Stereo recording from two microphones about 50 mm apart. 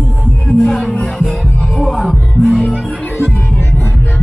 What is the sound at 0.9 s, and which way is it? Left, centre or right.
Music, left.